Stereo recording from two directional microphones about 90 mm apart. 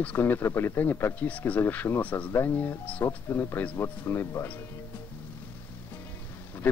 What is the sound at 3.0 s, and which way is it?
Speech, 30° left (ahead or behind).